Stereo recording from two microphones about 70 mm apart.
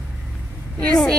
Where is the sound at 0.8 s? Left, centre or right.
Centre.